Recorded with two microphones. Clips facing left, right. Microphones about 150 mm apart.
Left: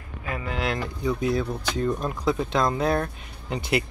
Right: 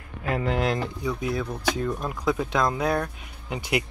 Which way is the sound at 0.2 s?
60° right (ahead or behind).